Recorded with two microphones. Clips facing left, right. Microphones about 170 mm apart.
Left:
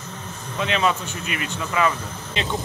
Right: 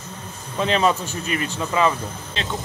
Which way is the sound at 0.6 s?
35° right (ahead or behind).